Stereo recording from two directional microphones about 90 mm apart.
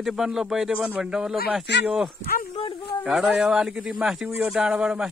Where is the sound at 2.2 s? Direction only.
90° left.